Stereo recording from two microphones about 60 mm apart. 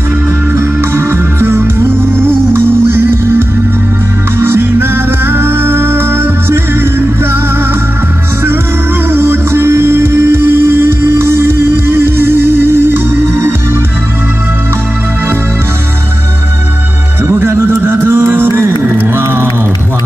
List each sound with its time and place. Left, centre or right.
0.6 s music: right
9.1 s music: right
17.3 s music: right
18.5 s music: right